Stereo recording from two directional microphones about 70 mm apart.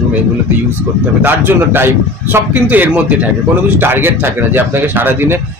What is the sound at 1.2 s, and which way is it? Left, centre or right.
Speech, right.